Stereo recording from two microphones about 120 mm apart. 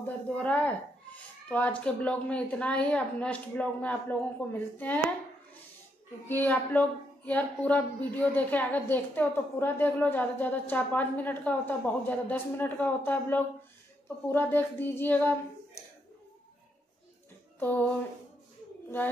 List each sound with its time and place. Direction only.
0.0 s speech: 10° left (ahead or behind)
6.2 s speech: 15° left (ahead or behind)
17.6 s speech: 15° left (ahead or behind)